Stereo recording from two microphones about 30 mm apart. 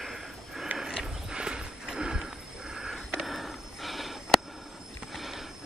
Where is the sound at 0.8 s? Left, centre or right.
Right.